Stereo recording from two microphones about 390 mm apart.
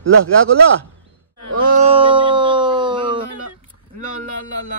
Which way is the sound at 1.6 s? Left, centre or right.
Centre.